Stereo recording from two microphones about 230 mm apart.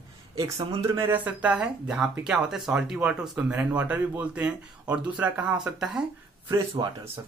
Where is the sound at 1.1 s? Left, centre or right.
Centre.